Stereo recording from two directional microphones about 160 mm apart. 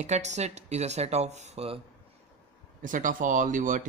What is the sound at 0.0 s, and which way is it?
Speech, 45° right (ahead or behind).